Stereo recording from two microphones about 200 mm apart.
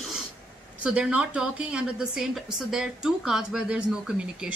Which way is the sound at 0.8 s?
5° right (ahead or behind).